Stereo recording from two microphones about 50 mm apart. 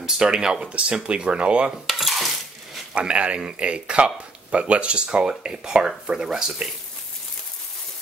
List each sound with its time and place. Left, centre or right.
0.0 s speech: centre
1.9 s cutlery: centre
2.9 s speech: right